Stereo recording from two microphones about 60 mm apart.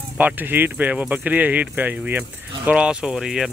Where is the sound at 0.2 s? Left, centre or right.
Right.